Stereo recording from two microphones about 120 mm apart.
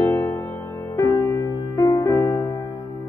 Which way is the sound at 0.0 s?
25° left (ahead or behind).